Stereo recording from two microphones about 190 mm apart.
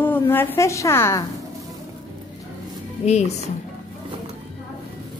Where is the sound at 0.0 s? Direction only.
10° left (ahead or behind).